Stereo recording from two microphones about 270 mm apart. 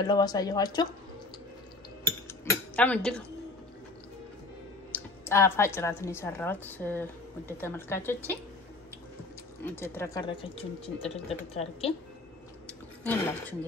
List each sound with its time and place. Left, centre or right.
0.0 s speech: centre
2.2 s cutlery: centre
4.9 s speech: centre
9.8 s a woman's voice: centre
13.0 s speech: centre